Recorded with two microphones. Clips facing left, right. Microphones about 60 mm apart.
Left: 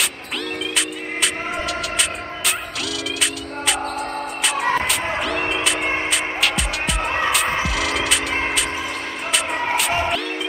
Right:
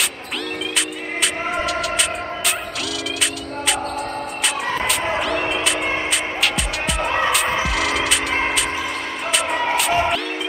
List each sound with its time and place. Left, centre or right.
0.7 s music: centre
4.8 s music: centre